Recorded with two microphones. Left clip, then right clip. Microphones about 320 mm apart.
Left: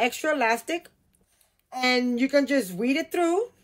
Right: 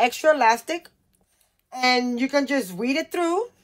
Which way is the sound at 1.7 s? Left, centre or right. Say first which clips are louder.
Right 3 dB; centre.